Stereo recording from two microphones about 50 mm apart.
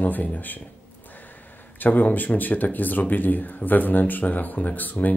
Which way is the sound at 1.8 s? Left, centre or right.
Left.